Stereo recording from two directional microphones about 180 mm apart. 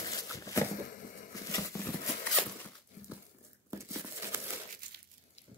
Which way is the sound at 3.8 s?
15° right (ahead or behind).